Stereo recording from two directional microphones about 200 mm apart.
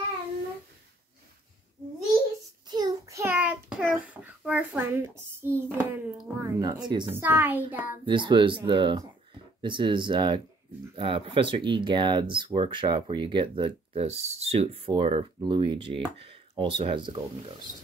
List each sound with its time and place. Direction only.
2.7 s child singing: 20° right (ahead or behind)
5.6 s a sound: 10° right (ahead or behind)
6.6 s speech: 20° right (ahead or behind)
7.1 s a woman's voice: 10° right (ahead or behind)
8.0 s speech: 25° right (ahead or behind)